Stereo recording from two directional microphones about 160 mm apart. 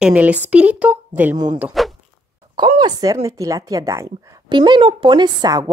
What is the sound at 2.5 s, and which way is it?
Speech, 25° right (ahead or behind).